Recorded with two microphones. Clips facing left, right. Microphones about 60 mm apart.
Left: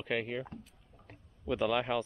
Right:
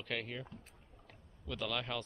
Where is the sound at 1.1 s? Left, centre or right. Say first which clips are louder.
Left 10 dB; left.